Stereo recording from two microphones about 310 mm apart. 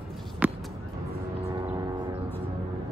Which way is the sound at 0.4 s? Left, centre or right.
Centre.